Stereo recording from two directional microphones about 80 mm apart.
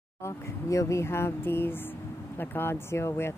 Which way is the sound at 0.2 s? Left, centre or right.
Left.